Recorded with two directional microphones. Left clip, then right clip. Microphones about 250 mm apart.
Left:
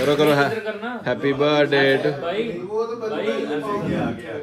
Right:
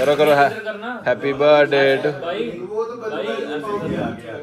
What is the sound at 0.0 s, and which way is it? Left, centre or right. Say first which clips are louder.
Speech: right 3 dB; centre.